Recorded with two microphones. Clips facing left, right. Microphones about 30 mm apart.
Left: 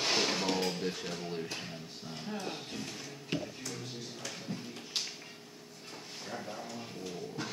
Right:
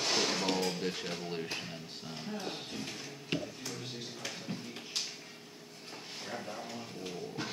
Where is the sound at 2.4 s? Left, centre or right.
Centre.